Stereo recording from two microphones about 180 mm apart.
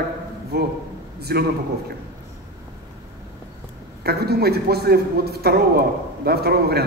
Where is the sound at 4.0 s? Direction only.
60° right (ahead or behind).